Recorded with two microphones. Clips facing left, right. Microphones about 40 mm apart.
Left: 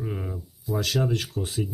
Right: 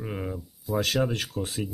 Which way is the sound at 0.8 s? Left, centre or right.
Right.